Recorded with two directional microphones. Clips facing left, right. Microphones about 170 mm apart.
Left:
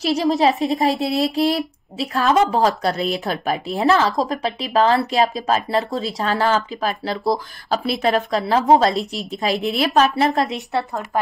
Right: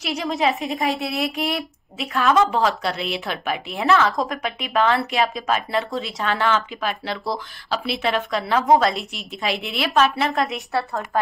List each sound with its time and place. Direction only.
0.0 s a woman's voice: 35° left (ahead or behind)